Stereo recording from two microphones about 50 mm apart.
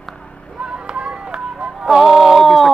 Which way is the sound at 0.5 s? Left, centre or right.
Centre.